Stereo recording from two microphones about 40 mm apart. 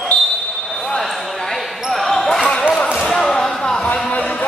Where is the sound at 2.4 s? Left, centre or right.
Left.